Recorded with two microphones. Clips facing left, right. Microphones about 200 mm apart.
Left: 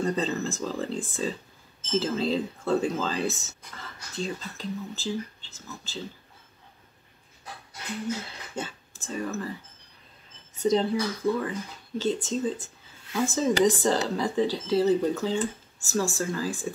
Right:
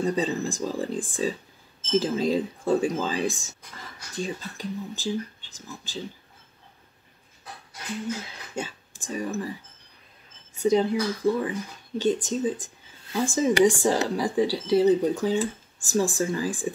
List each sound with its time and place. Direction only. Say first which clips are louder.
0.0 s speech: right 2 dB; 10° right (ahead or behind)
8.5 s speech: right 2 dB; 15° right (ahead or behind)
10.5 s speech: right 2 dB; 10° right (ahead or behind)